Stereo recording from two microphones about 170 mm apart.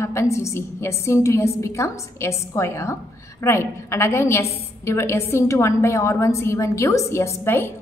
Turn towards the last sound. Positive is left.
turn(degrees=15)  # may be behind; listen again after turning